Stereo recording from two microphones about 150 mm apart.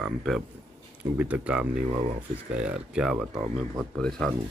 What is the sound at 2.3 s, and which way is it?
Speech, 65° right (ahead or behind).